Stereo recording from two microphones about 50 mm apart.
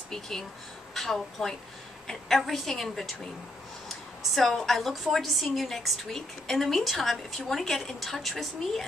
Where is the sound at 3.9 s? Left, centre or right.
Centre.